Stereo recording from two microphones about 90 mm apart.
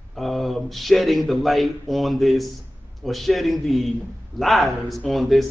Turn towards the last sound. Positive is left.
turn(degrees=0)  # may be behind; listen again after turning